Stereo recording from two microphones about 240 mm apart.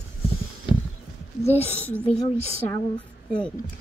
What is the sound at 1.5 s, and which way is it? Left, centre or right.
Speech, left.